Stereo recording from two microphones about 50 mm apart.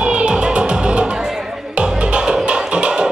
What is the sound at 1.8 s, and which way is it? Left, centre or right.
Music, centre.